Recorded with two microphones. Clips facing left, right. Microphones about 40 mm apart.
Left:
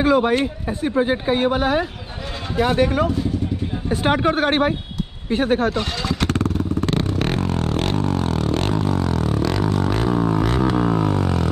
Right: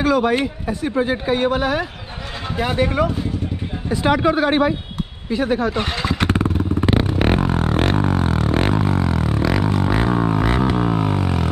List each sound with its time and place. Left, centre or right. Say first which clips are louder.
0.0 s speech: left 1 dB; left
1.1 s speech: even; centre
1.4 s speech: even; left
2.8 s speech: right 2 dB; right
4.1 s speech: right 2 dB; left
5.7 s motorcycle: right 1 dB; right
9.4 s music: right 1 dB; centre
10.6 s didgeridoo: even; centre